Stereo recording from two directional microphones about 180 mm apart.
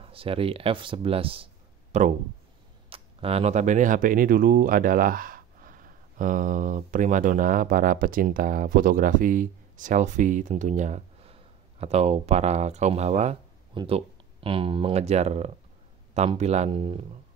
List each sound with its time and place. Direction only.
0.0 s speech: 30° right (ahead or behind)